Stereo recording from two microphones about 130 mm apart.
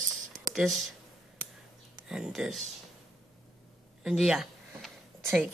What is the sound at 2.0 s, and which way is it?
Speech, 5° right (ahead or behind).